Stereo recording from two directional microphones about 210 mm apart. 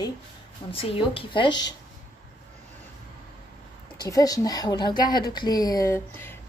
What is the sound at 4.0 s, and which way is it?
Speech, 15° left (ahead or behind).